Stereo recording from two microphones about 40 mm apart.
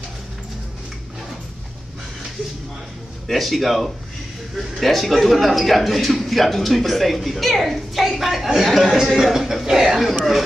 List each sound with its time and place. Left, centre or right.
3.3 s a man's voice: centre